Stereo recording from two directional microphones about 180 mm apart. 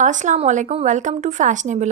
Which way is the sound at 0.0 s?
45° right (ahead or behind).